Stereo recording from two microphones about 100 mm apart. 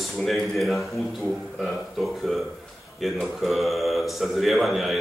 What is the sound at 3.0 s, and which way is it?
A man's voice, centre (ahead or behind).